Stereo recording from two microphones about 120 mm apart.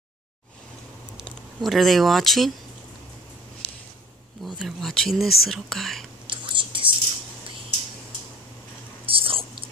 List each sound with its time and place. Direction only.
1.2 s speech: centre (ahead or behind)
4.5 s speech: centre (ahead or behind)
6.2 s whispering: 45° right (ahead or behind)
9.0 s whispering: 50° right (ahead or behind)